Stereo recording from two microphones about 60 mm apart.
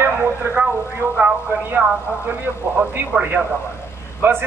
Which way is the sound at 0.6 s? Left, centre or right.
Centre.